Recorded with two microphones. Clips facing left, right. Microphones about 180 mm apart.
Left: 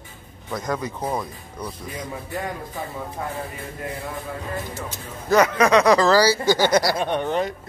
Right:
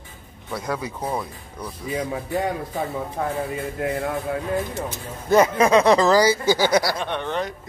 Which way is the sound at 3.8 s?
75° right (ahead or behind).